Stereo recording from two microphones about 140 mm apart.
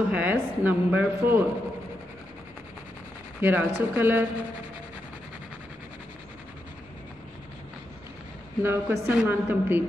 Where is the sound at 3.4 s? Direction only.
10° right (ahead or behind).